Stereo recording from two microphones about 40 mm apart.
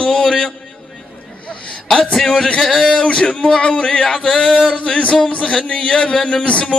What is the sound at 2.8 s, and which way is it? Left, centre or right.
Music, left.